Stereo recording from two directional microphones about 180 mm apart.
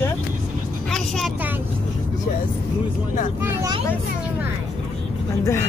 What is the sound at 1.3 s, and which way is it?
Speech, 10° right (ahead or behind).